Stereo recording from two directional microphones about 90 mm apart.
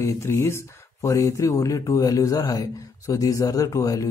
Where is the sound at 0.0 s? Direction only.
30° left (ahead or behind).